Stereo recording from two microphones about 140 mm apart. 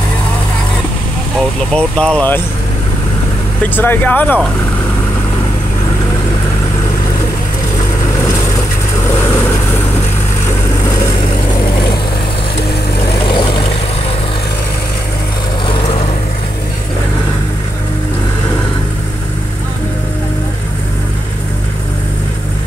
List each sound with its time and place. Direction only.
1.7 s speech: 5° left (ahead or behind)
3.7 s speech: 15° left (ahead or behind)
13.2 s vehicle: 35° left (ahead or behind)
15.6 s vehicle: 40° left (ahead or behind)